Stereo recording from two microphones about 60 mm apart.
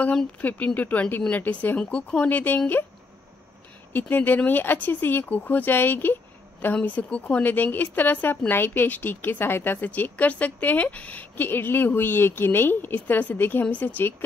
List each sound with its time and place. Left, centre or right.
0.4 s speech: left
3.9 s speech: left